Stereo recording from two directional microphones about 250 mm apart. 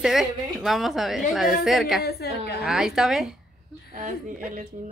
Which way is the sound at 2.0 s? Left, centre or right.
Left.